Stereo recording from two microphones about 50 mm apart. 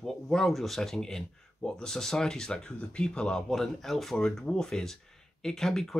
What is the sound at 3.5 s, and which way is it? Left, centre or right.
Speech, centre.